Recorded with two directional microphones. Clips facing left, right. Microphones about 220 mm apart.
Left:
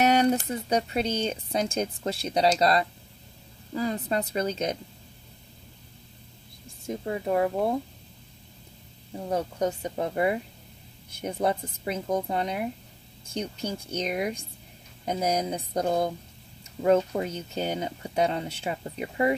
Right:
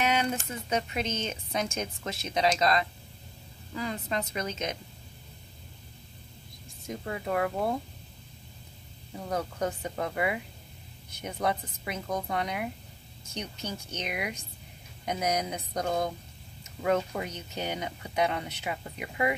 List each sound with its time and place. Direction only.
0.0 s speech: 40° left (ahead or behind)
6.9 s speech: 25° left (ahead or behind)
9.1 s speech: 25° left (ahead or behind)